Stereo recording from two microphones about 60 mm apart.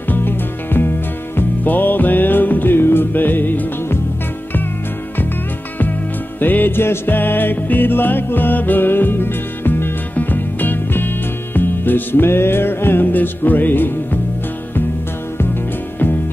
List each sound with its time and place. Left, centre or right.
0.1 s music: left
6.4 s music: left